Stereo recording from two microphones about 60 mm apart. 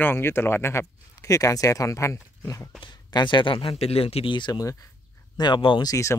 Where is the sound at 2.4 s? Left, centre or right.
Left.